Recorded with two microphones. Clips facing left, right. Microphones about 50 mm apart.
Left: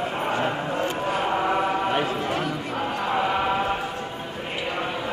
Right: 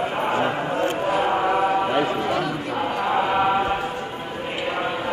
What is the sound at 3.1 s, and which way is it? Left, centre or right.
Chant, centre.